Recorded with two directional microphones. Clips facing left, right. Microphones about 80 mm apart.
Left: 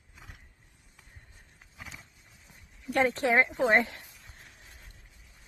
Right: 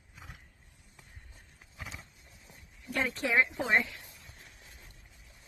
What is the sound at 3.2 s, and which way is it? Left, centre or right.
Speech, left.